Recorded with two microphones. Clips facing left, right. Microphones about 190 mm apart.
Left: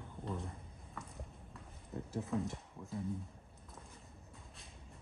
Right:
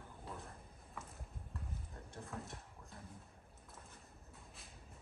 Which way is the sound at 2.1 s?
Centre (ahead or behind).